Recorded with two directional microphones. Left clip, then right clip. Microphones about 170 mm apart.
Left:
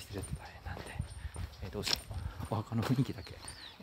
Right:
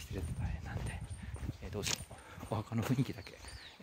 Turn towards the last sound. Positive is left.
turn(degrees=-15)  # may be behind; listen again after turning